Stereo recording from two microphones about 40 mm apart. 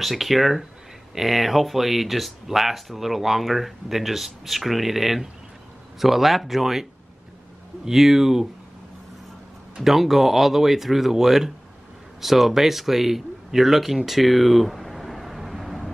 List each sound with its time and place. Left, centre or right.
0.0 s speech: centre
9.8 s speech: centre